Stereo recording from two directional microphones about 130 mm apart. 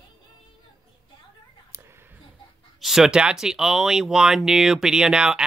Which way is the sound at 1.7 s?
20° right (ahead or behind).